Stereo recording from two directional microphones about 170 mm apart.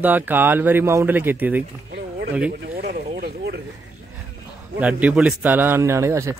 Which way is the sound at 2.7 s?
60° right (ahead or behind).